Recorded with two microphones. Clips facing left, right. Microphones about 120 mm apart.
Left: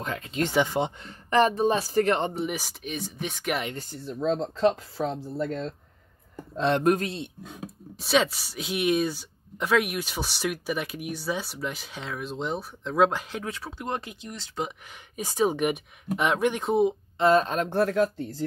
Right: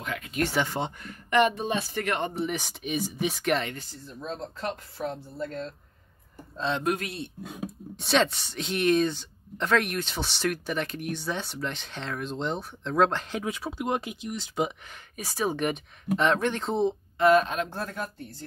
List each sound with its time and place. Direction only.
0.0 s speech: 30° left (ahead or behind)
0.5 s a woman's voice: 15° left (ahead or behind)
1.0 s speech: 35° left (ahead or behind)
2.3 s a woman's voice: 15° left (ahead or behind)
2.6 s speech: 5° right (ahead or behind)
3.9 s speech: 85° left
6.5 s speech: 60° left (ahead or behind)
7.0 s speech: 25° left (ahead or behind)
7.4 s speech: 10° right (ahead or behind)
7.9 s a woman's voice: 5° left (ahead or behind)
13.4 s speech: 10° right (ahead or behind)
14.9 s a woman's voice: 20° left (ahead or behind)
17.2 s speech: 30° left (ahead or behind)
17.6 s speech: 80° left